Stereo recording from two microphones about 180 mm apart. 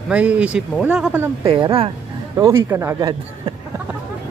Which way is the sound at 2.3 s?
15° right (ahead or behind).